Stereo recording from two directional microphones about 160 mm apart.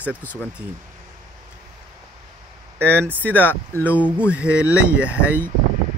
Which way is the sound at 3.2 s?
10° left (ahead or behind).